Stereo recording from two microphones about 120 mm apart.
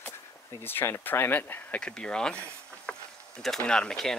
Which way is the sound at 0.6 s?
20° left (ahead or behind).